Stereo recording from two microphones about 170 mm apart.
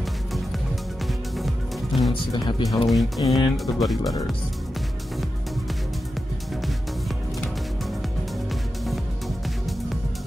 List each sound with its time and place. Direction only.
1.3 s music: centre (ahead or behind)
2.3 s speech: 25° left (ahead or behind)
2.9 s speech: centre (ahead or behind)